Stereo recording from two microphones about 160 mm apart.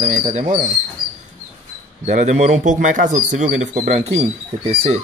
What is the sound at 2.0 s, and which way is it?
Speech, 50° right (ahead or behind).